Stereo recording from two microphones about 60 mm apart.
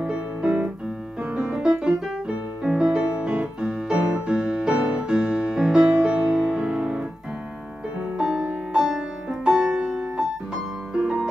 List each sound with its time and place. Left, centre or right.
0.0 s music: centre
8.2 s music: centre